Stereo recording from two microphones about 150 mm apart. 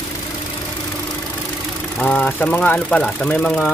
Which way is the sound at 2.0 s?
10° left (ahead or behind).